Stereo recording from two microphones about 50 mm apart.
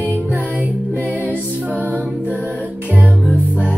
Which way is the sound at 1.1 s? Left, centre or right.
Right.